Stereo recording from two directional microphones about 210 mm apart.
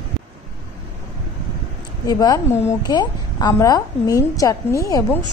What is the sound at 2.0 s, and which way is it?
A woman's voice, 15° left (ahead or behind).